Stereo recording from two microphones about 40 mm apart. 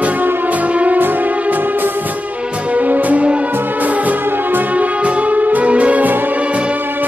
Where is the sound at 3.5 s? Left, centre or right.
Right.